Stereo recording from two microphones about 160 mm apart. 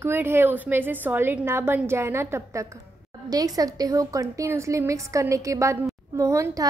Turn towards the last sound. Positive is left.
turn(degrees=-20)  # may be behind; listen again after turning